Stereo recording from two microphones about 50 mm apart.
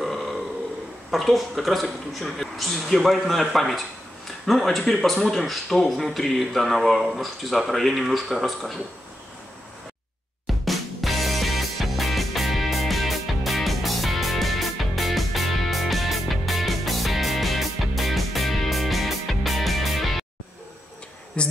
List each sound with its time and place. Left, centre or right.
0.0 s burping: centre
1.1 s speech: centre
10.4 s music: centre
21.4 s a sound: left